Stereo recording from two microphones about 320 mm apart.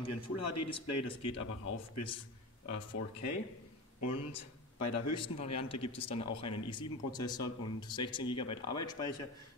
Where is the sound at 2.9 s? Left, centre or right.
Left.